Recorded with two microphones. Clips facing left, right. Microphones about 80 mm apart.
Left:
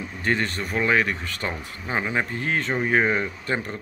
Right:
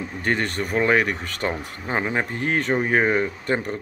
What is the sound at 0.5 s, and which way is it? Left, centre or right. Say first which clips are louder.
Speech: right 3 dB; right.